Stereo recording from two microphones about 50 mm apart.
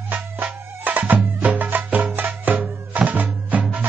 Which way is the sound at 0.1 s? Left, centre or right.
Right.